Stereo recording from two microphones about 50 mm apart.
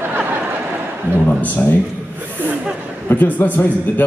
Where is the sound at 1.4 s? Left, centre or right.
Left.